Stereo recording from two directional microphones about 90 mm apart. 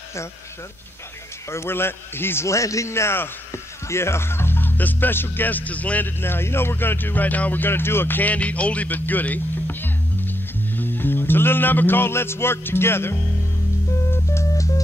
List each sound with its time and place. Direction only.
1.5 s a man's voice: 30° left (ahead or behind)
14.1 s music: 30° left (ahead or behind)